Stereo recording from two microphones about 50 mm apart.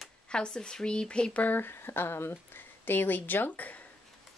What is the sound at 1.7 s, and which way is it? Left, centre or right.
Speech, left.